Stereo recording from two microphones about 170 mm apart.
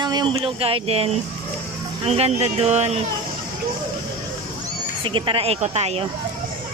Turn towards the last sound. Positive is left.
turn(degrees=-40)  # may be behind; listen again after turning